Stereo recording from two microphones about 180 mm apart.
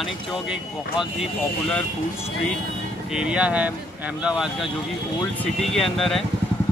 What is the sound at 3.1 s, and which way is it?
Speech, 5° right (ahead or behind).